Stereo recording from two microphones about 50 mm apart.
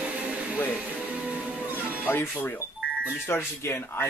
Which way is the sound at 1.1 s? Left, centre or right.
Right.